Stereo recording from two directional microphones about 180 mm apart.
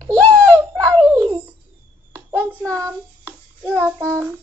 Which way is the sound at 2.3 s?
10° right (ahead or behind).